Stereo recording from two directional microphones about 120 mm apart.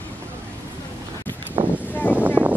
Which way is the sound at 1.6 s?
45° right (ahead or behind).